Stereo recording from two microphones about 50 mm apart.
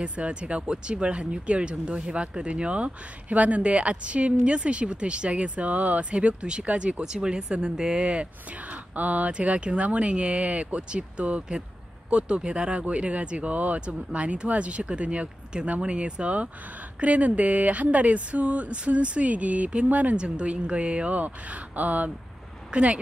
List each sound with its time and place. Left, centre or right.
0.0 s speech: right
8.9 s speech: right
20.2 s speech: centre